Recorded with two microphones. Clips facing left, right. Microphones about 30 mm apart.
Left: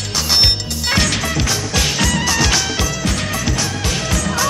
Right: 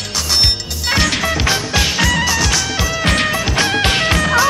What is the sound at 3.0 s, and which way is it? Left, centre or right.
Music, right.